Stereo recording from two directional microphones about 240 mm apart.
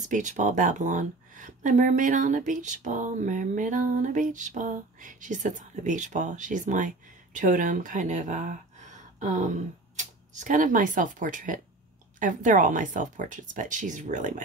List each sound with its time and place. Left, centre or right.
0.0 s speech: right